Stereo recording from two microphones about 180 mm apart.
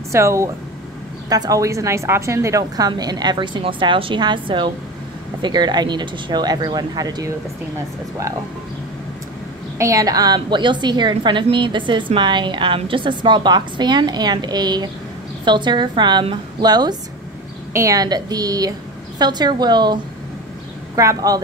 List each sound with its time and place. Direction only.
0.1 s a woman's voice: 15° right (ahead or behind)
9.8 s a woman's voice: 20° right (ahead or behind)